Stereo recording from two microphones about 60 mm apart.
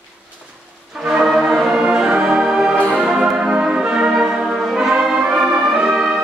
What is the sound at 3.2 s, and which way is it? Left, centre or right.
Brass instrument, centre.